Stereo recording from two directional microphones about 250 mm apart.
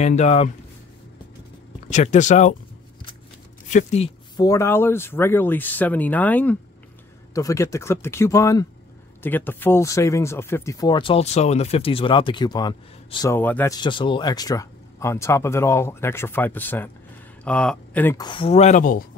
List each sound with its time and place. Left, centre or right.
0.0 s speech: left
1.9 s speech: left
3.6 s speech: left
4.5 s speech: centre; by 19.0 s left